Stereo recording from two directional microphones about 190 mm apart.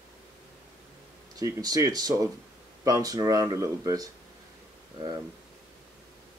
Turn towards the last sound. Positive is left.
turn(degrees=-25)  # may be behind; listen again after turning